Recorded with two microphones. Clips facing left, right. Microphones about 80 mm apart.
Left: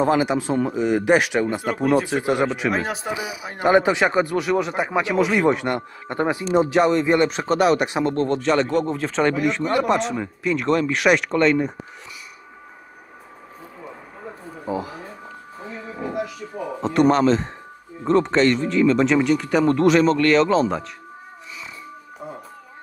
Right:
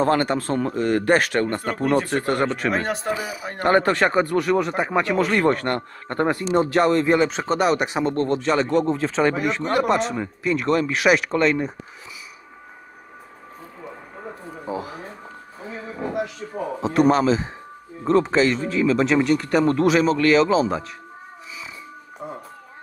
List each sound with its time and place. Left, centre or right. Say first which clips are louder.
0.0 s speech: left 1 dB; centre
16.2 s speech: right 1 dB; right
16.8 s speech: left 1 dB; centre